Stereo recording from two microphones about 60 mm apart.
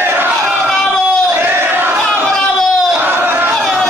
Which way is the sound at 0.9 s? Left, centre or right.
Centre.